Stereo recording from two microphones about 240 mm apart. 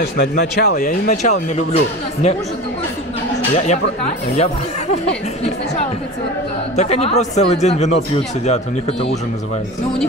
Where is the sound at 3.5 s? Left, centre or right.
Left.